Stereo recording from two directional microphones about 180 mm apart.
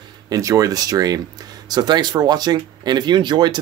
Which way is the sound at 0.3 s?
20° right (ahead or behind).